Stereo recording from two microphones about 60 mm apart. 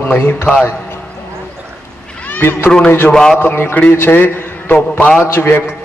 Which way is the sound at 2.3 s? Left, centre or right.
Left.